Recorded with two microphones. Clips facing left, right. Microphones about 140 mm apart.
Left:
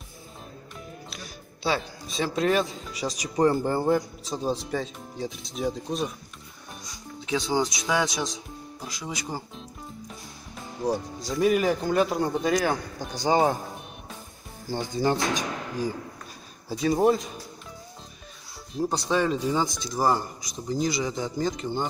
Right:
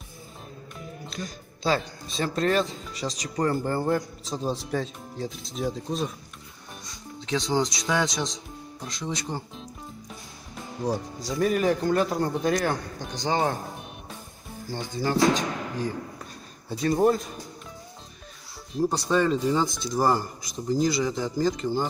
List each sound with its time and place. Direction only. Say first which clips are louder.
0.7 s speech: right 5 dB; 5° left (ahead or behind)
3.2 s speech: left 4 dB; 15° left (ahead or behind)
7.2 s speech: even; 5° left (ahead or behind)
10.8 s speech: left 1 dB; centre (ahead or behind)
13.3 s speech: left 4 dB; 20° left (ahead or behind)
15.0 s speech: right 1 dB; 20° left (ahead or behind)
16.6 s speech: even; centre (ahead or behind)
18.8 s speech: right 2 dB; centre (ahead or behind)